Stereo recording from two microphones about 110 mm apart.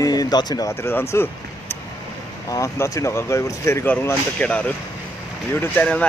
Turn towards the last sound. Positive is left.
turn(degrees=15)  # may be behind; listen again after turning